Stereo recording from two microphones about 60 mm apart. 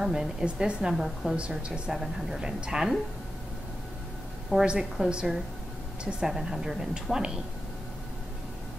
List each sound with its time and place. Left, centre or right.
0.0 s speech: centre
0.9 s a woman's voice: centre
4.6 s speech: centre